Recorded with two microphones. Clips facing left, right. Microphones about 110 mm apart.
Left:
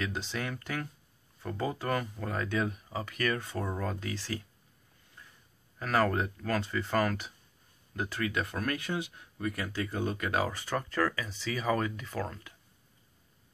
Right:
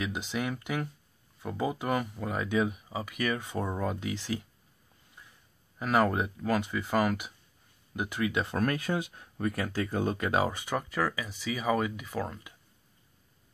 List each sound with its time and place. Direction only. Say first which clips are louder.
0.0 s speech: right 3 dB; 15° right (ahead or behind)
5.8 s speech: right 2 dB; 15° right (ahead or behind)
8.5 s speech: right 4 dB; 40° right (ahead or behind); by 12.5 s 10° right (ahead or behind)